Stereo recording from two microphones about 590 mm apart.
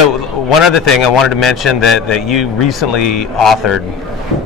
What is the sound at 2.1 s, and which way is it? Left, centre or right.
A man's voice, left.